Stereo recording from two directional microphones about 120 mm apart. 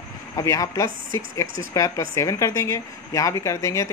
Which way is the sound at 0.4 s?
30° left (ahead or behind).